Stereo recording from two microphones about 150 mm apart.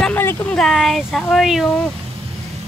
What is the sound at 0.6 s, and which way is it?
Speech, centre (ahead or behind).